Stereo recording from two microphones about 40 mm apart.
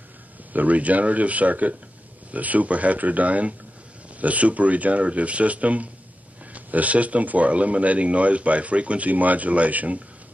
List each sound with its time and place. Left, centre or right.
0.5 s speech: right